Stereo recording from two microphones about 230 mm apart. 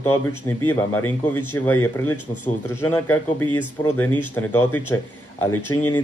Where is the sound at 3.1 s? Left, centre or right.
Left.